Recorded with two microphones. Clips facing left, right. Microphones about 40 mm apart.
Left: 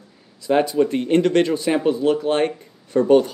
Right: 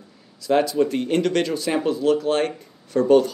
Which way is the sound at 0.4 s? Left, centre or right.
Left.